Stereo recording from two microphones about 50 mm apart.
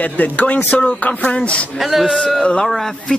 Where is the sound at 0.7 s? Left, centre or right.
Left.